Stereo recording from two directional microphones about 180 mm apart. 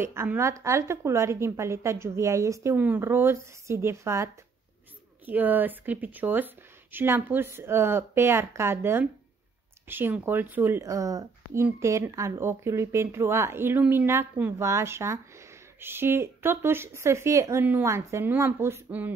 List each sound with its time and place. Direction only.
0.0 s speech: 15° right (ahead or behind)